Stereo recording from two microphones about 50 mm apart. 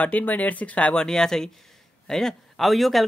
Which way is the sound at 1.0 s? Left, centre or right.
Centre.